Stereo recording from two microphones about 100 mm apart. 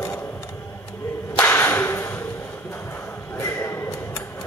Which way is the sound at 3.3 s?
25° left (ahead or behind).